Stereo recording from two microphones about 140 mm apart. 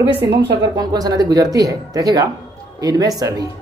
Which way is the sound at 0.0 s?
35° right (ahead or behind).